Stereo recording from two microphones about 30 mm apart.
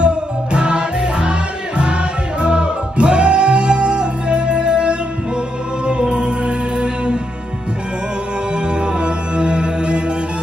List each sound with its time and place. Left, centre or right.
0.0 s music: right
2.4 s music: right
9.0 s music: right